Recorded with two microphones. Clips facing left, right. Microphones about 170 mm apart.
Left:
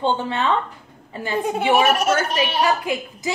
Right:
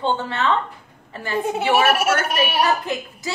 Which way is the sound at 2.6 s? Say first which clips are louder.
Left 1 dB; 10° left (ahead or behind).